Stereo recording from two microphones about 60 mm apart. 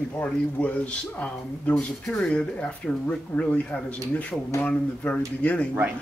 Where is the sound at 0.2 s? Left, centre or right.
Left.